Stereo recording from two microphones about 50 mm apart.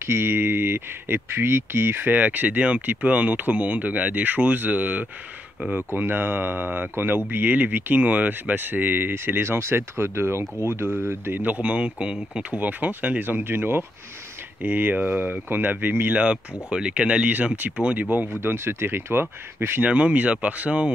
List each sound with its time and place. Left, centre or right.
0.0 s speech: right
11.4 s speech: right
11.7 s speech: right
12.5 s speech: right
14.6 s speech: right
16.7 s speech: centre
18.4 s speech: right
19.8 s speech: right